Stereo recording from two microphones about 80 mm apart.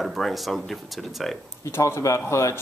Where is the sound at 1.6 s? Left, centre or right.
Left.